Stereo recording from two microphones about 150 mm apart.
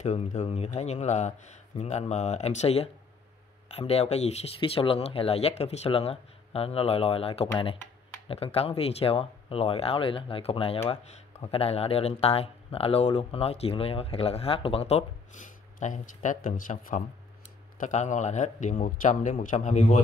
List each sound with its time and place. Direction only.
0.0 s a man's voice: 50° left (ahead or behind)